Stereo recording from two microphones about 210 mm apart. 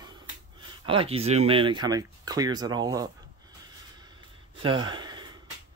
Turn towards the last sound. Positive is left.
turn(degrees=-20)  # may be behind; listen again after turning